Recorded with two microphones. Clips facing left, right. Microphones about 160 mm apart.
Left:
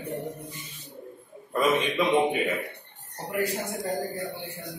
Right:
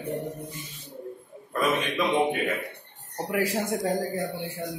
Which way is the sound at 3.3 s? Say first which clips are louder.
Right 2 dB; 90° right.